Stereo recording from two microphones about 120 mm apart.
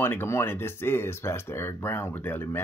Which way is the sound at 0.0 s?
20° left (ahead or behind).